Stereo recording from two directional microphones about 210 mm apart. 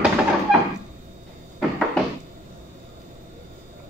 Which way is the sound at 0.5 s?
Centre (ahead or behind).